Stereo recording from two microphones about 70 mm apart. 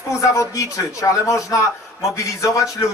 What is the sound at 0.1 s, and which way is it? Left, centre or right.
Speech, left.